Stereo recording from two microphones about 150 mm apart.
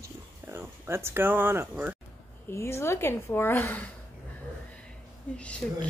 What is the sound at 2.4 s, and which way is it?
A woman's voice, 15° left (ahead or behind).